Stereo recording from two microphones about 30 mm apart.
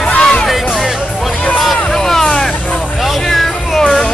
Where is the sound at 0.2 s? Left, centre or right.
Left.